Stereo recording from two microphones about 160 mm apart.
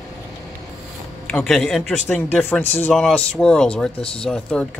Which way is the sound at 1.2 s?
5° left (ahead or behind).